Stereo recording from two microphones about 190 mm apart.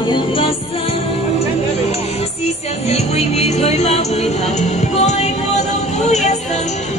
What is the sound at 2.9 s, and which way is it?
Music, 35° left (ahead or behind).